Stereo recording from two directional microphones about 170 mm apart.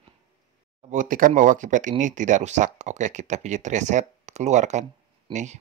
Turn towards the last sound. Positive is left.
turn(degrees=-45)  # may be behind; listen again after turning